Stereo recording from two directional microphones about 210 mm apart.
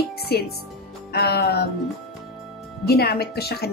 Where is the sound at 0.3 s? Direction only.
50° left (ahead or behind).